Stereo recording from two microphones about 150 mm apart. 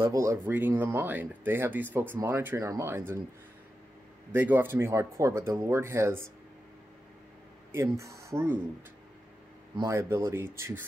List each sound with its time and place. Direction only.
0.0 s speech: 20° right (ahead or behind)
4.3 s speech: 15° right (ahead or behind)
7.7 s speech: 20° right (ahead or behind)
9.8 s speech: 20° right (ahead or behind)